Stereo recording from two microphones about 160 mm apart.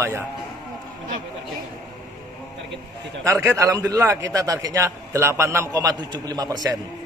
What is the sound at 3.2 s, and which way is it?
A man's voice, 20° right (ahead or behind).